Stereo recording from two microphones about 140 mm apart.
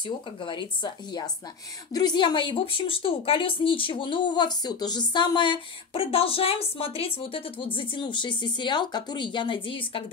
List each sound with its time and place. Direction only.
0.0 s speech: 35° left (ahead or behind)